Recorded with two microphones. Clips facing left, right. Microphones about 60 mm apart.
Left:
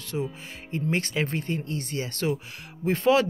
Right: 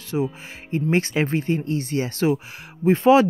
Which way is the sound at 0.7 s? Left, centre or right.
Right.